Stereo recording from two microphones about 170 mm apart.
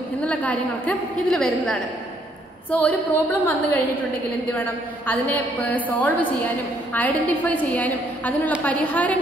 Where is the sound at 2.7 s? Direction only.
10° left (ahead or behind).